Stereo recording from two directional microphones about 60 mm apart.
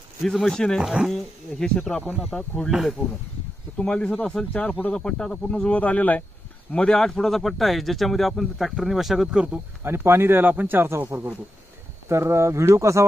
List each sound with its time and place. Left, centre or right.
0.2 s speech: centre
1.0 s speech: centre
1.6 s speech: centre
2.7 s speech: centre
3.7 s speech: centre
4.5 s speech: left
4.9 s speech: centre
6.7 s speech: centre
9.8 s speech: right
12.1 s speech: right